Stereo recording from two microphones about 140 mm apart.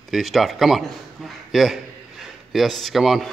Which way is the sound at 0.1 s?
Centre (ahead or behind).